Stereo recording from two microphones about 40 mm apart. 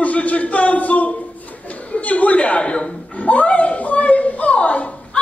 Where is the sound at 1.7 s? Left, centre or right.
Left.